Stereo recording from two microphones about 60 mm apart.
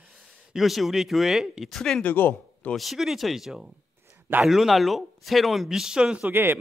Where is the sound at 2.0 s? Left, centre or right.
Left.